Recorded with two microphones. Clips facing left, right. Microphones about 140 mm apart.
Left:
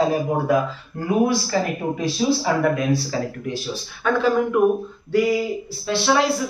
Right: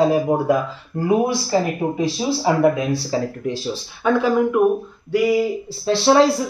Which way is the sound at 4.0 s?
10° right (ahead or behind).